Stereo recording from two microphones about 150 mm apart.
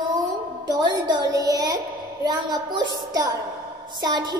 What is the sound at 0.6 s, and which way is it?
A woman's voice, 25° right (ahead or behind).